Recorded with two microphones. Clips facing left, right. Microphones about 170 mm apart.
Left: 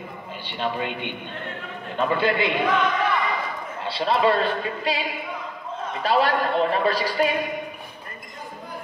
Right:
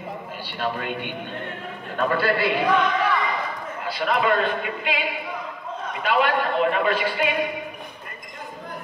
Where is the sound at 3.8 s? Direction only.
30° left (ahead or behind).